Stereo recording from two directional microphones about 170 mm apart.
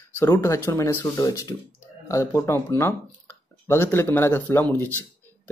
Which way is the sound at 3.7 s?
15° left (ahead or behind).